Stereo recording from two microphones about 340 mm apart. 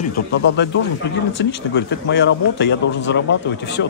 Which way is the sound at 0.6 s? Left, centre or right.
Left.